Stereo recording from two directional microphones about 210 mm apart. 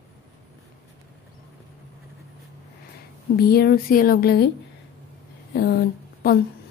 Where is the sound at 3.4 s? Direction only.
50° left (ahead or behind).